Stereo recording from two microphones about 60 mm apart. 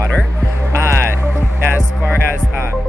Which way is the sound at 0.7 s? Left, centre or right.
Right.